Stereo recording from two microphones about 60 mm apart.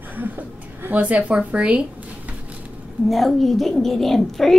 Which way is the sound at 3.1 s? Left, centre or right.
Centre.